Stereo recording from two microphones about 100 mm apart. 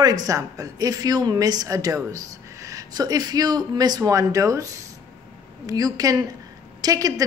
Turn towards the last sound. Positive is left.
turn(degrees=-40)  # may be behind; listen again after turning